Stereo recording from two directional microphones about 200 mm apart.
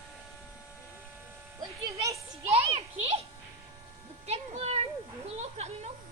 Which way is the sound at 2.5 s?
30° right (ahead or behind).